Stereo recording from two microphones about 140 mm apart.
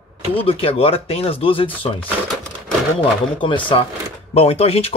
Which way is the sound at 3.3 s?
35° left (ahead or behind).